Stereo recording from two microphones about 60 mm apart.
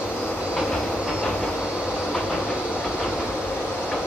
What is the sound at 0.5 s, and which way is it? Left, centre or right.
Train, centre.